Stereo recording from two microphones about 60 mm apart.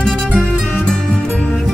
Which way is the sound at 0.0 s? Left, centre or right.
Centre.